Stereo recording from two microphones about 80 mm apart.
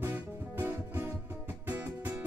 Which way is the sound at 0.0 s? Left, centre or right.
Right.